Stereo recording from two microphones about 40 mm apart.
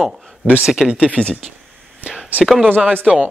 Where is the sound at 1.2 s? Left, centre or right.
Right.